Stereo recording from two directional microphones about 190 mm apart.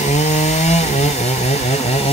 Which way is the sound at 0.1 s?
35° left (ahead or behind).